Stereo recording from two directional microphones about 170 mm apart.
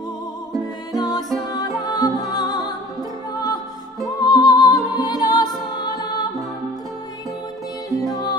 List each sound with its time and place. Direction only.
0.9 s music: 25° left (ahead or behind)
7.9 s music: 20° left (ahead or behind)